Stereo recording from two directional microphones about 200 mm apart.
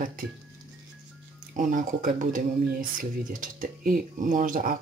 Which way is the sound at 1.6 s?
40° right (ahead or behind).